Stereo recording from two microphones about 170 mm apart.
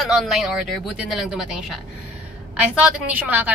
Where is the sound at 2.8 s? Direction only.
10° right (ahead or behind).